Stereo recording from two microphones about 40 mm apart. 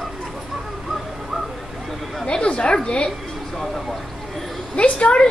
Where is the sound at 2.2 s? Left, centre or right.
Left.